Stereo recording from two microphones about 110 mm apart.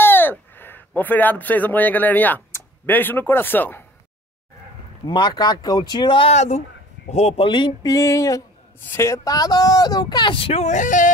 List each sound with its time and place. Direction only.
0.0 s a man's voice: 20° left (ahead or behind)
5.0 s speech: 45° left (ahead or behind)
6.3 s speech: 90° left
7.4 s speech: 45° left (ahead or behind)
7.8 s a sound: 30° left (ahead or behind)
8.9 s speech: 25° left (ahead or behind); by 10.6 s 55° left (ahead or behind)